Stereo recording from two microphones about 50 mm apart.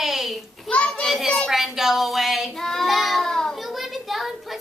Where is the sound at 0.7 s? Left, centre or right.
Left.